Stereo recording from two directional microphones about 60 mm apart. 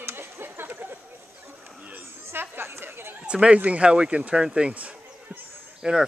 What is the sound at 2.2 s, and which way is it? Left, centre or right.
Chatter, right.